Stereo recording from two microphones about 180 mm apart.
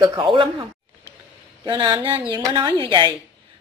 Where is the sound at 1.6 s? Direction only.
25° right (ahead or behind).